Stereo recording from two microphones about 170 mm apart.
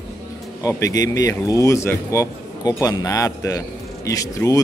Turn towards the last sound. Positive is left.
turn(degrees=20)  # may be behind; listen again after turning